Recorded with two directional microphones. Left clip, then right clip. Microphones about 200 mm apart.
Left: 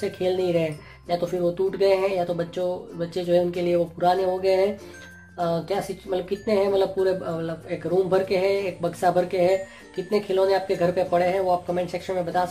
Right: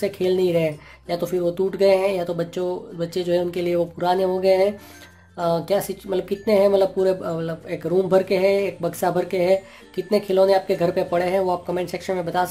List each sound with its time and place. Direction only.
0.0 s speech: 40° right (ahead or behind)